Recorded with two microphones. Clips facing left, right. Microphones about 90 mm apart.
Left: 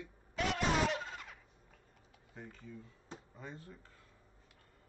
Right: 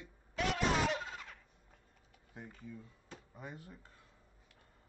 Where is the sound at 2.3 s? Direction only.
10° right (ahead or behind).